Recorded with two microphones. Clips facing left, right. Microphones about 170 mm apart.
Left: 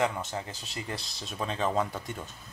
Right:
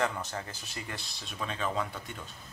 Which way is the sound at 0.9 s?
35° left (ahead or behind).